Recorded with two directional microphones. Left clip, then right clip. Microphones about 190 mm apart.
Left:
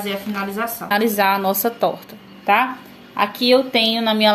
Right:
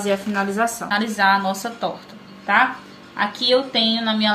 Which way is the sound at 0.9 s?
60° left (ahead or behind).